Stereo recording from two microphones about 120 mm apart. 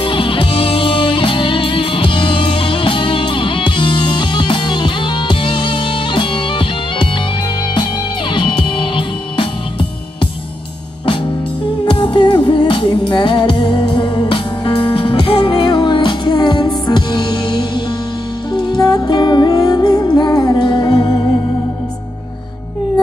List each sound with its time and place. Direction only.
0.0 s music: 45° left (ahead or behind)
8.3 s music: 40° left (ahead or behind)
11.8 s music: 40° left (ahead or behind)